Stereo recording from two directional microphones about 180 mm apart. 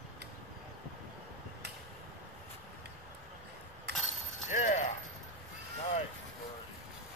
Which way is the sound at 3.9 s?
65° right (ahead or behind).